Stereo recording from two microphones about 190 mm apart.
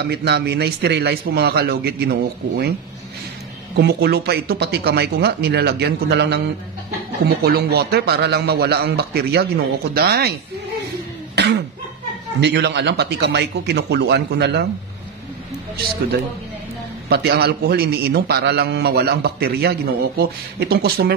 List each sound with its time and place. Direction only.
0.0 s a man's voice: 60° right (ahead or behind)
3.7 s a man's voice: 60° right (ahead or behind)
7.4 s a man's voice: 55° right (ahead or behind)
11.3 s cough: 65° right (ahead or behind)
12.4 s a man's voice: 65° right (ahead or behind)
17.1 s a man's voice: 55° right (ahead or behind)